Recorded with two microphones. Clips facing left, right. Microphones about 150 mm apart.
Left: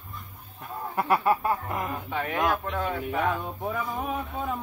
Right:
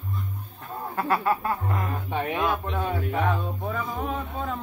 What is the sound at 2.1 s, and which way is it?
Speech, 25° right (ahead or behind).